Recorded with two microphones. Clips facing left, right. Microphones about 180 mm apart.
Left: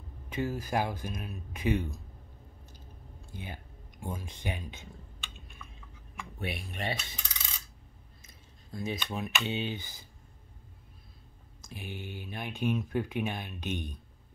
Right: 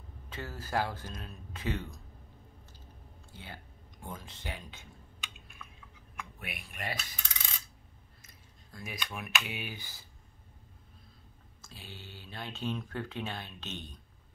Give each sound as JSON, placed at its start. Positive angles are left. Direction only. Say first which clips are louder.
{"t": 0.3, "sound": "speech", "louder": "left 5 dB", "side_deg": 15}
{"t": 3.3, "sound": "speech", "louder": "left 5 dB", "side_deg": 15}
{"t": 5.6, "sound": "chewing", "louder": "even", "side_deg": 5}
{"t": 6.4, "sound": "speech", "louder": "left 6 dB", "side_deg": 30}
{"t": 8.7, "sound": "speech", "louder": "left 7 dB", "side_deg": 25}
{"t": 11.6, "sound": "speech", "louder": "left 8 dB", "side_deg": 15}